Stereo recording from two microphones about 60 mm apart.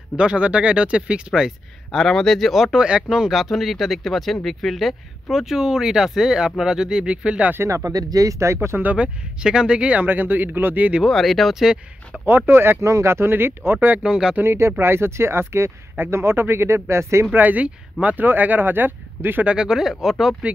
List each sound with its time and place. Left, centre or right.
0.2 s speech: centre
1.9 s speech: centre
7.6 s speech: right
8.9 s speech: centre
10.0 s speech: right
11.1 s speech: centre
12.3 s speech: right
12.8 s speech: right
14.0 s speech: centre
14.4 s speech: right
17.3 s speech: right
19.4 s speech: centre